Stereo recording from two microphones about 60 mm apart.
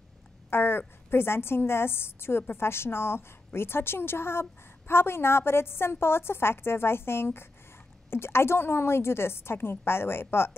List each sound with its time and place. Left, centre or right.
0.5 s a woman's voice: left